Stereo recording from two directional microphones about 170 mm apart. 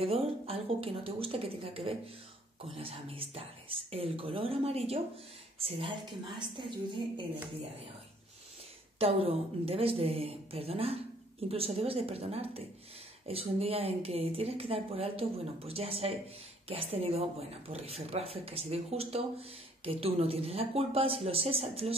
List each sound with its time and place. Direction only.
0.0 s a woman's voice: 35° right (ahead or behind)
8.9 s speech: 35° right (ahead or behind)